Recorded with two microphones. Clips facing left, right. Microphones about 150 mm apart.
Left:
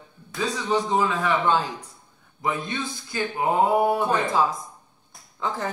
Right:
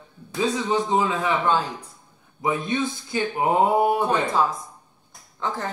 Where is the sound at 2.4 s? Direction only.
20° right (ahead or behind).